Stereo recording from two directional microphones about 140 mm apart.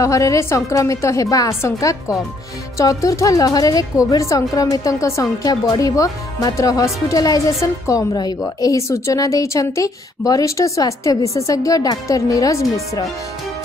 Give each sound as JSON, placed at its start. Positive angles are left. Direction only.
{"t": 0.0, "sound": "speech", "side_deg": 25}